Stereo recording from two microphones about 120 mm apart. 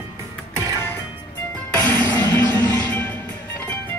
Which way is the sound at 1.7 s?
15° left (ahead or behind).